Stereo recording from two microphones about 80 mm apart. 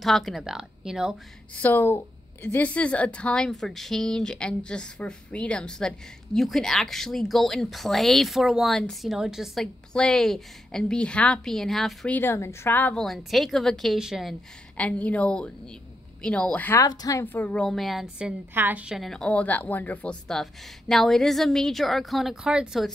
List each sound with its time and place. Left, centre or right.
0.0 s a woman's voice: centre
1.5 s a woman's voice: left; by 9.7 s centre
9.9 s a woman's voice: centre
11.5 s a woman's voice: centre
12.1 s speech: left
12.9 s a woman's voice: centre
14.8 s a woman's voice: centre
16.7 s speech: left
17.2 s speech: left
17.6 s a woman's voice: centre
18.5 s a woman's voice: right
18.9 s a woman's voice: centre
19.1 s speech: centre
20.9 s a woman's voice: centre